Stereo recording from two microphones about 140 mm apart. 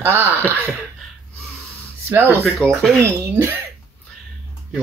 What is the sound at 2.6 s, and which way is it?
Speech, 5° left (ahead or behind).